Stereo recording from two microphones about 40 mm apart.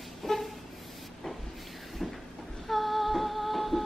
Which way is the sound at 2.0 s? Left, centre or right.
Centre.